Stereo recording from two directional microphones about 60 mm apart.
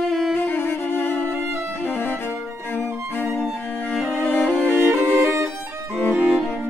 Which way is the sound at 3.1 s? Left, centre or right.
Left.